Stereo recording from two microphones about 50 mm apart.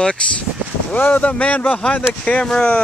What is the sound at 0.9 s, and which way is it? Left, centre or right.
Speech, left.